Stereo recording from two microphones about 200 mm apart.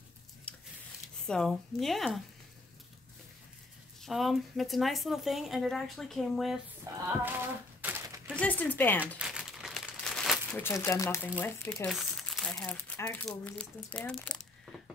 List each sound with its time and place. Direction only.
0.5 s a sound: 5° left (ahead or behind)
1.2 s speech: 5° left (ahead or behind)
4.0 s speech: centre (ahead or behind)
6.9 s female singing: 15° right (ahead or behind)
7.2 s a sound: 10° right (ahead or behind)
8.4 s speech: 10° left (ahead or behind)
9.2 s crumpling: 5° right (ahead or behind)
10.5 s speech: 15° left (ahead or behind)